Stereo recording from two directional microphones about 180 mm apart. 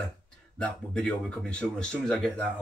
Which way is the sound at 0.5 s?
5° left (ahead or behind).